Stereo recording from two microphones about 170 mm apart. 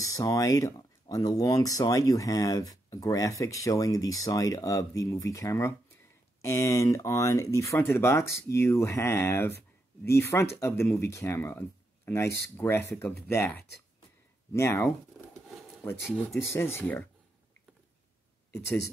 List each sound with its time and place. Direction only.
0.0 s speech: 20° left (ahead or behind)
16.3 s speech: 15° left (ahead or behind)